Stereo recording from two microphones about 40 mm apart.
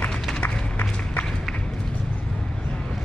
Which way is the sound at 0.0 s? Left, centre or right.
Left.